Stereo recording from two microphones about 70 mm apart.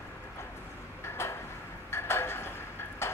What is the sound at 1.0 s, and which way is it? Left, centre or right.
Tick-tock, left.